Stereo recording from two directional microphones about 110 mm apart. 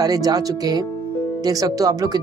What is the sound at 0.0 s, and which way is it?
Speech, 35° right (ahead or behind).